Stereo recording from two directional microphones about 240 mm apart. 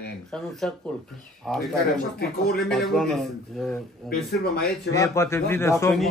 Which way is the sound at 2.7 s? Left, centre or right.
Centre.